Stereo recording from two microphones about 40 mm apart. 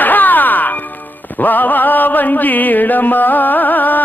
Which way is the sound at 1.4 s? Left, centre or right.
Left.